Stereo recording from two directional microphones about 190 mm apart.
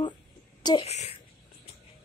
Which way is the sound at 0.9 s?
35° left (ahead or behind).